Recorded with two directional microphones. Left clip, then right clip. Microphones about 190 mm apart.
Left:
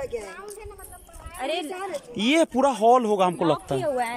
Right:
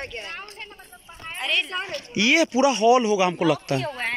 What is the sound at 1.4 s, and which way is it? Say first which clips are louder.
Speech: right 5 dB; 60° left (ahead or behind).